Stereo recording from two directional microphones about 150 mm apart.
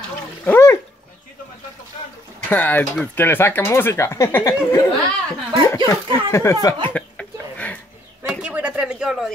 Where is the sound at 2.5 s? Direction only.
10° left (ahead or behind).